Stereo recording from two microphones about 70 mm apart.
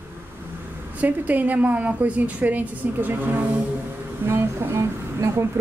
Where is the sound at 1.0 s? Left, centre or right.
Right.